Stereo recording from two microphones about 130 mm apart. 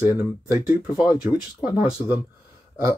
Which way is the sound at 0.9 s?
30° left (ahead or behind).